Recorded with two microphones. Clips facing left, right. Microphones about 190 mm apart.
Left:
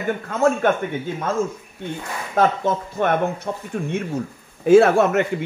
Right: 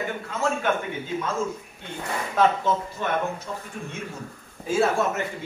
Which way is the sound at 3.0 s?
60° left (ahead or behind).